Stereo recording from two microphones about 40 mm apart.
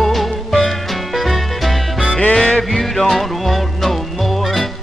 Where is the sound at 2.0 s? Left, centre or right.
Left.